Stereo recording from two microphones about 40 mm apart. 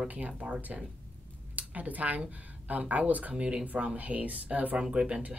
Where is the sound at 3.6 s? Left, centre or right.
Right.